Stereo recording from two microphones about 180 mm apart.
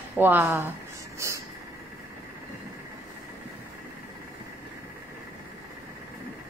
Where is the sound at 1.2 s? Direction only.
15° right (ahead or behind).